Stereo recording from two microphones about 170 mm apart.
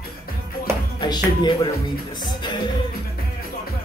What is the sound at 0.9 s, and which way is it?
Music, 25° left (ahead or behind).